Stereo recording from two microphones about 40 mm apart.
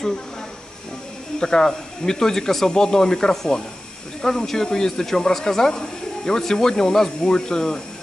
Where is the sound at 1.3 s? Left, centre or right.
Centre.